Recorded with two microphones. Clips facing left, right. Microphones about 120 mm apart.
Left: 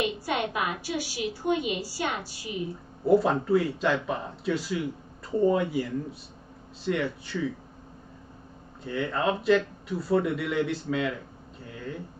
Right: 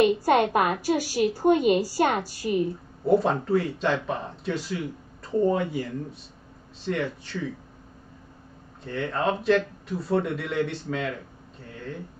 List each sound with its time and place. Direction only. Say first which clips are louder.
0.0 s a woman's voice: right 8 dB; 45° right (ahead or behind)
3.1 s speech: even; centre (ahead or behind)
8.8 s speech: right 1 dB; centre (ahead or behind)